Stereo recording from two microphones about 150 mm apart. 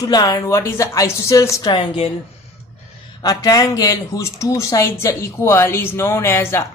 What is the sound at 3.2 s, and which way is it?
Speech, 25° left (ahead or behind).